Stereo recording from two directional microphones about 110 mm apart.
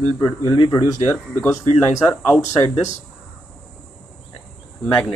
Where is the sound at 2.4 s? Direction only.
90° left.